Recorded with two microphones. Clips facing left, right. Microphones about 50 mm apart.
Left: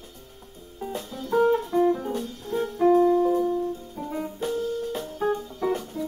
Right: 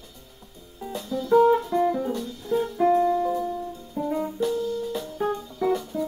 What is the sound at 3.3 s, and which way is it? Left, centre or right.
Music, centre.